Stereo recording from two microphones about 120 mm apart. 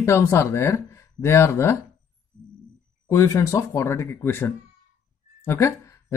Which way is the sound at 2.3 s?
20° right (ahead or behind).